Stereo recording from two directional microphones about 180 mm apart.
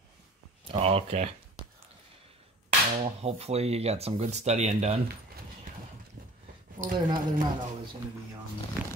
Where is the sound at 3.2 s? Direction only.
35° right (ahead or behind).